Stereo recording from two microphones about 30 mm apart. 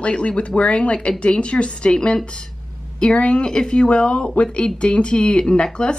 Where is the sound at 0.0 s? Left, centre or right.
Left.